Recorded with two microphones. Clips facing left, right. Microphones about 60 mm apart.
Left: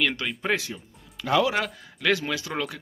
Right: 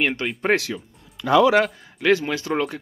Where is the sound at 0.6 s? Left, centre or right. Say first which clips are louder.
Right 7 dB; right.